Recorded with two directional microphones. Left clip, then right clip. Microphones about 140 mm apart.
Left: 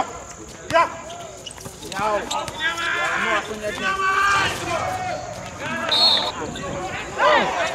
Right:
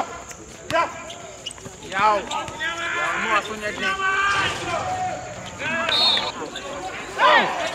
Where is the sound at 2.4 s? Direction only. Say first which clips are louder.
Left 3 dB; 30° left (ahead or behind).